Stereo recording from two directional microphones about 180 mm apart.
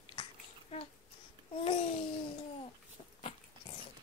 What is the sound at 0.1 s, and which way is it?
Babbling, 30° left (ahead or behind).